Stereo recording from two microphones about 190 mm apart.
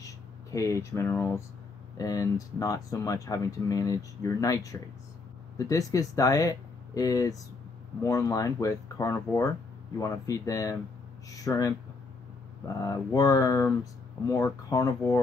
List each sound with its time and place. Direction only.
0.0 s speech: 15° left (ahead or behind)